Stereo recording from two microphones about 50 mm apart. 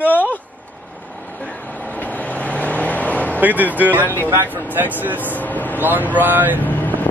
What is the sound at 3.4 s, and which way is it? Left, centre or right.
Speech, right.